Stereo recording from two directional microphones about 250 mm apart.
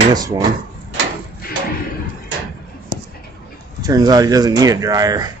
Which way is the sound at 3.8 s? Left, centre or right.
Centre.